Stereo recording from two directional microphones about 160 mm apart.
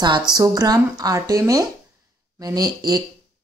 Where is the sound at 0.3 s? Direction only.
25° right (ahead or behind).